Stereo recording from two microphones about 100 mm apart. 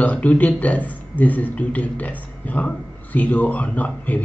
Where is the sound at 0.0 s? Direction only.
15° left (ahead or behind).